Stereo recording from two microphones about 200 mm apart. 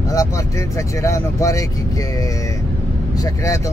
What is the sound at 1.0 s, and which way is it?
Speech, 15° left (ahead or behind).